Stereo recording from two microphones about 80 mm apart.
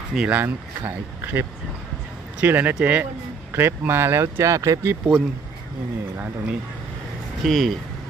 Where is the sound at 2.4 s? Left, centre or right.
Right.